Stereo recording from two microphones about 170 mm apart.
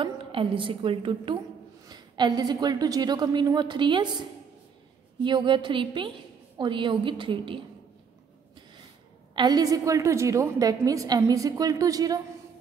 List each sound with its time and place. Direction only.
0.0 s a woman's voice: 30° right (ahead or behind)
5.2 s a woman's voice: 30° right (ahead or behind)
9.3 s a woman's voice: 25° right (ahead or behind)